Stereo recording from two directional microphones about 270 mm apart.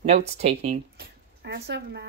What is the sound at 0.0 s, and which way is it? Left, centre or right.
Speech, right.